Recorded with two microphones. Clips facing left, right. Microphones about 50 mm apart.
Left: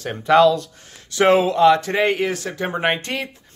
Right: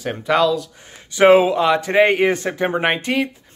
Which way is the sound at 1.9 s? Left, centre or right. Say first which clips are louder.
Right 5 dB; right.